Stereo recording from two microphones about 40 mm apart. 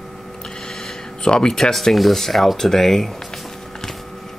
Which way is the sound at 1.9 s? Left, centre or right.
Centre.